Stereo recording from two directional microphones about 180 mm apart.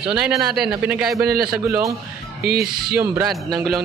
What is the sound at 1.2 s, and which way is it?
Speech, 55° right (ahead or behind).